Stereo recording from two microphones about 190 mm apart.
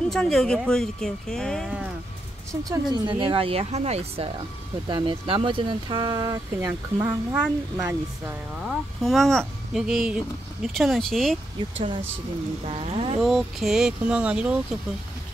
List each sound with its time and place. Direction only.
0.1 s speech: centre (ahead or behind)
2.7 s speech: 20° right (ahead or behind)
9.0 s speech: centre (ahead or behind)
12.6 s speech: 30° right (ahead or behind)
13.2 s speech: centre (ahead or behind)